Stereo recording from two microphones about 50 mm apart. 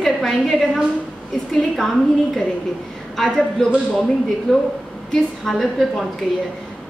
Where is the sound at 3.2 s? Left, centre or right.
Centre.